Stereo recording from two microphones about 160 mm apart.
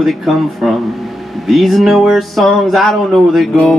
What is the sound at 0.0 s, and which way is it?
Music, centre (ahead or behind).